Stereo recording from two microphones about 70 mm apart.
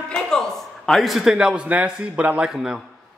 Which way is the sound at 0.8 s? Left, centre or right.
Centre.